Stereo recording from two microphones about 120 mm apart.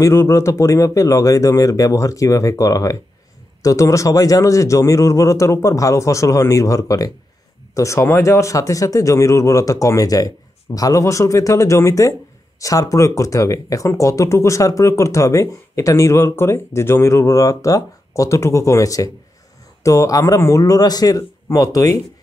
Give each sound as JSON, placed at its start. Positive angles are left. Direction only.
{"t": 0.0, "sound": "speech", "side_deg": 20}